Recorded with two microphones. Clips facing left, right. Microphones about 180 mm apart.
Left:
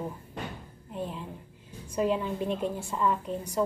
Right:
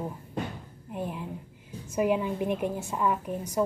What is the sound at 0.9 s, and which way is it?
A woman's voice, 15° right (ahead or behind).